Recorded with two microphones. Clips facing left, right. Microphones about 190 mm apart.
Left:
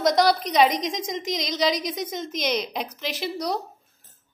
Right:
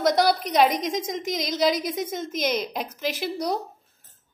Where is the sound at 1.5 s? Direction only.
5° right (ahead or behind).